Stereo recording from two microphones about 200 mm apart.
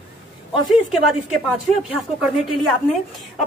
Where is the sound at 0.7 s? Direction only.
Centre (ahead or behind).